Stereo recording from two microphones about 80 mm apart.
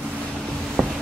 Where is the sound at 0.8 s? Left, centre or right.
Centre.